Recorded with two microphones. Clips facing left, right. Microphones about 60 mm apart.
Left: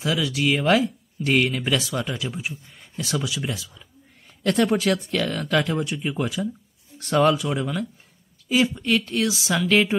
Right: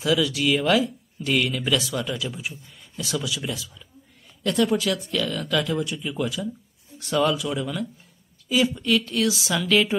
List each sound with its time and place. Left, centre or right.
0.0 s speech: left
4.5 s speech: left